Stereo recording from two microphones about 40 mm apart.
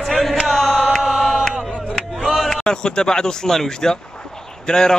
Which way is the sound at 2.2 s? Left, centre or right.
Centre.